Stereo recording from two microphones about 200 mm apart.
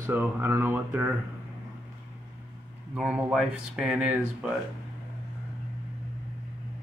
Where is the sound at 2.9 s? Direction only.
5° right (ahead or behind).